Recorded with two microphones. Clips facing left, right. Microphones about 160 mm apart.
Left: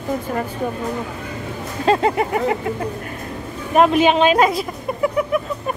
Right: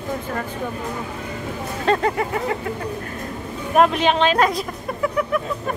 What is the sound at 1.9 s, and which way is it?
Speech, 25° left (ahead or behind).